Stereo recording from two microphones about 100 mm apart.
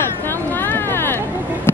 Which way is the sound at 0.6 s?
20° left (ahead or behind).